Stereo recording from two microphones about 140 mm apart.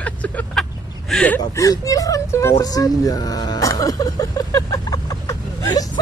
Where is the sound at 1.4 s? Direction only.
25° left (ahead or behind).